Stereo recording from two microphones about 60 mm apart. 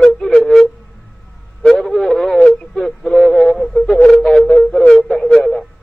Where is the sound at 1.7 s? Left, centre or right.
Centre.